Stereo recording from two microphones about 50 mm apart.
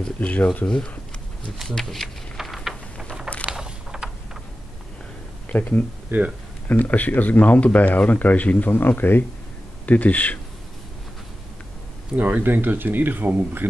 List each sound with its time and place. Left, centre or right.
0.2 s speech: left
0.7 s speech: centre
2.3 s a sound: centre
3.6 s a sound: centre
5.5 s speech: left
6.1 s speech: right
6.7 s speech: left
9.8 s speech: left
12.2 s speech: right
12.4 s speech: right